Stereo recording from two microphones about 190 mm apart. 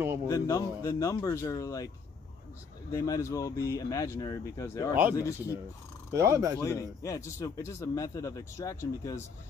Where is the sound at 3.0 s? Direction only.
15° left (ahead or behind).